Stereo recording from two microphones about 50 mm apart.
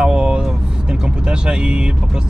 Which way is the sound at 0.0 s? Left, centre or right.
Centre.